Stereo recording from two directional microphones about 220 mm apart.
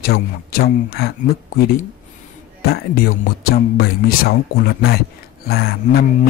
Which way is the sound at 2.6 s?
45° left (ahead or behind).